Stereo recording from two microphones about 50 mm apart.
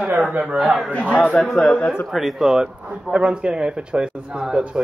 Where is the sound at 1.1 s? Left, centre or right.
Left.